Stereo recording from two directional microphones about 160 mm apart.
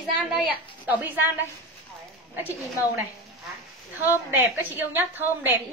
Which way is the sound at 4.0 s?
10° right (ahead or behind).